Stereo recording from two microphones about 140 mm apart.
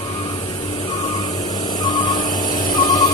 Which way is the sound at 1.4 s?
30° left (ahead or behind).